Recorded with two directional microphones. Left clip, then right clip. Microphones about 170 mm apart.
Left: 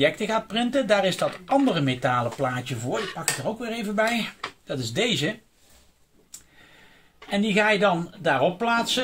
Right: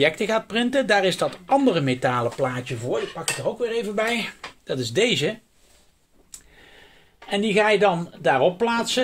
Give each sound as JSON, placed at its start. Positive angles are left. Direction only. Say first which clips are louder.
{"t": 0.0, "sound": "speech", "louder": "right 2 dB", "side_deg": -75}
{"t": 7.2, "sound": "speech", "louder": "right 2 dB", "side_deg": -65}